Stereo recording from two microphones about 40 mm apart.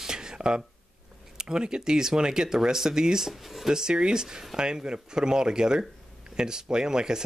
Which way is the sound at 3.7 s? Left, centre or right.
Centre.